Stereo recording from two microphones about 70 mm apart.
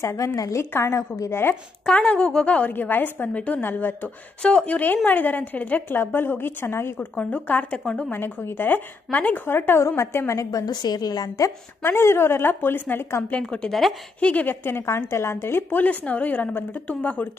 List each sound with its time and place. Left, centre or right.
0.0 s a woman's voice: left
1.9 s a woman's voice: centre; by 7.1 s left
7.2 s a woman's voice: centre
7.8 s a woman's voice: centre
8.1 s a woman's voice: left
9.8 s a woman's voice: left
11.8 s a woman's voice: left
13.4 s a woman's voice: centre
13.7 s a woman's voice: centre
14.2 s a woman's voice: left
15.8 s a woman's voice: left